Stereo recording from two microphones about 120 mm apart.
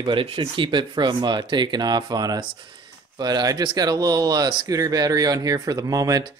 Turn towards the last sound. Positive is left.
turn(degrees=-30)  # may be behind; listen again after turning